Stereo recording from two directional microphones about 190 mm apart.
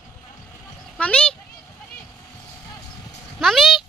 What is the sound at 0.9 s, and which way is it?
Speech, 5° left (ahead or behind).